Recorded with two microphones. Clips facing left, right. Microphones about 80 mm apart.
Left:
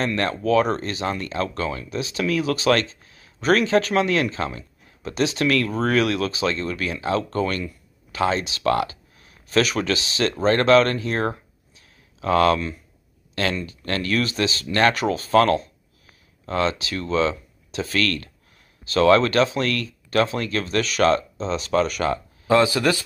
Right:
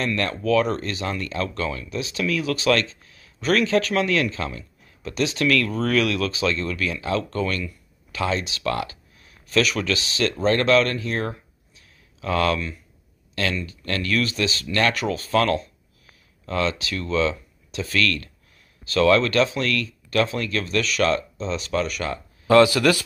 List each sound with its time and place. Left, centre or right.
0.0 s speech: left
22.5 s speech: left